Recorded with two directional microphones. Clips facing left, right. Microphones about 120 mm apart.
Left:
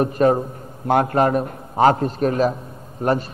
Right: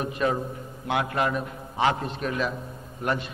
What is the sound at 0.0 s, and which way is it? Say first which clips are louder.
A man's voice: left 9 dB; 45° left (ahead or behind).